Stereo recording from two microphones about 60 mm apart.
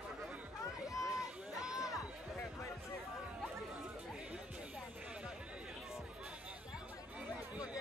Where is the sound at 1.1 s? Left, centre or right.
Centre.